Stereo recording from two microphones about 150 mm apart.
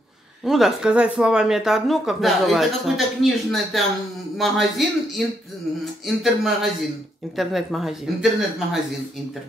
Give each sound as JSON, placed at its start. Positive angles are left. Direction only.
{"t": 0.5, "sound": "speech", "side_deg": 0}